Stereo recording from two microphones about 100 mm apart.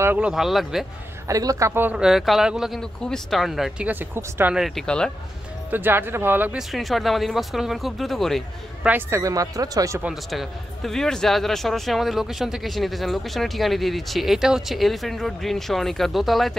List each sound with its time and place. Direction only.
0.2 s speech: 5° right (ahead or behind)
1.2 s speech: 35° right (ahead or behind)
1.7 s speech: 20° right (ahead or behind)
2.0 s speech: 5° right (ahead or behind)
3.8 s speech: 20° right (ahead or behind)
4.6 s speech: centre (ahead or behind)
5.7 s speech: 20° right (ahead or behind)
6.5 s speech: centre (ahead or behind)
8.8 s speech: 20° right (ahead or behind)
9.2 s speech: 35° right (ahead or behind)
10.3 s speech: centre (ahead or behind)